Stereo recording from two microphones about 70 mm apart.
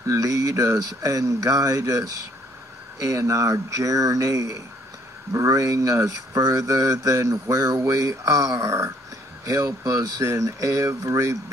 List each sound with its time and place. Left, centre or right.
0.0 s speech: right